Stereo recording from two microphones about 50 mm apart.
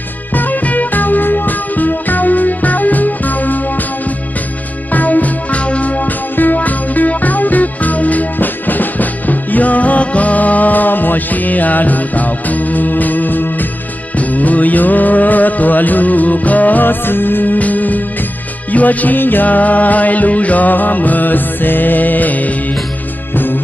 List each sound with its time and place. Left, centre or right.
0.3 s music: left
4.9 s music: left